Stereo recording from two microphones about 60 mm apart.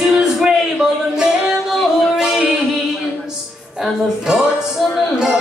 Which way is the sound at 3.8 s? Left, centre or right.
Centre.